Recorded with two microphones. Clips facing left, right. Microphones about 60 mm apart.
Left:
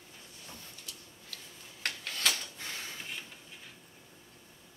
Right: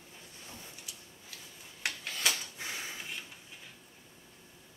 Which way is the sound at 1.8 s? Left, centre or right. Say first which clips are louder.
Even; centre.